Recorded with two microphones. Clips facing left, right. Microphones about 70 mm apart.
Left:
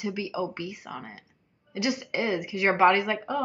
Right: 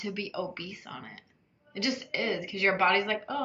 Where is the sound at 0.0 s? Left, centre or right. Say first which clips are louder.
Left 4 dB; centre.